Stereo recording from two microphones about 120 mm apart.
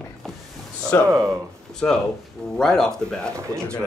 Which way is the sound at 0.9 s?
20° left (ahead or behind).